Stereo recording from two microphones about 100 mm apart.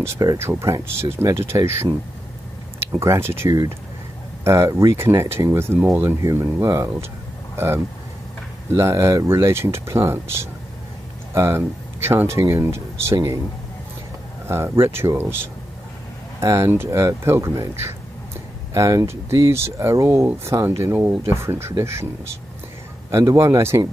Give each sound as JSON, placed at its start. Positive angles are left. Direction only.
{"t": 0.0, "sound": "speech", "side_deg": -30}
{"t": 2.8, "sound": "speech", "side_deg": -25}
{"t": 14.5, "sound": "speech", "side_deg": -25}
{"t": 16.3, "sound": "speech", "side_deg": -30}